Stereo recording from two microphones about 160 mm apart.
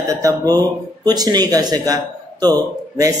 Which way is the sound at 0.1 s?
20° right (ahead or behind).